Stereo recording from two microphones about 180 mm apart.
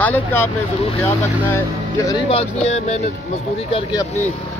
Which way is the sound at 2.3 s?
35° left (ahead or behind).